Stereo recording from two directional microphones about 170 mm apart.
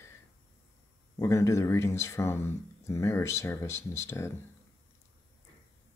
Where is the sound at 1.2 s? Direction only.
15° left (ahead or behind).